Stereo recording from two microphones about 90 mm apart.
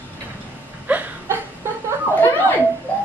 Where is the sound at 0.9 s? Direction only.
20° right (ahead or behind).